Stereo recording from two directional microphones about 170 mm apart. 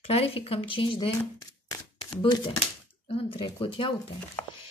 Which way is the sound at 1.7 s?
25° left (ahead or behind).